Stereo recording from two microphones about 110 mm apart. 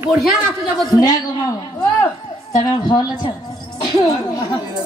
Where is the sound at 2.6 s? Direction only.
35° left (ahead or behind).